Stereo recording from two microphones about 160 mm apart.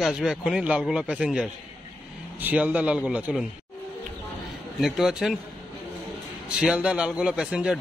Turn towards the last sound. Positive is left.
turn(degrees=-5)  # may be behind; listen again after turning